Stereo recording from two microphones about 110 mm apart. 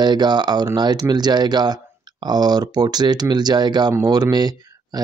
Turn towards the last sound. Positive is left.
turn(degrees=-35)  # may be behind; listen again after turning